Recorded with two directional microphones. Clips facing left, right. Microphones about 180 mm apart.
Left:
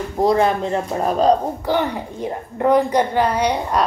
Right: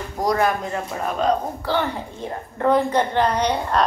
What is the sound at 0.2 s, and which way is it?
Speech, 25° left (ahead or behind).